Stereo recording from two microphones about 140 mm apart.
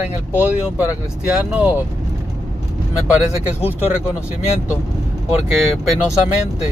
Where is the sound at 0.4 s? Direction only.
10° right (ahead or behind).